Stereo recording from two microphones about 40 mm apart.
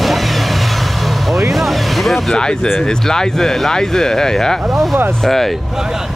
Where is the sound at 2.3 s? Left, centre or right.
Centre.